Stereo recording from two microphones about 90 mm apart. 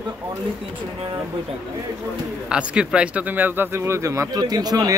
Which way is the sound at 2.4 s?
10° right (ahead or behind).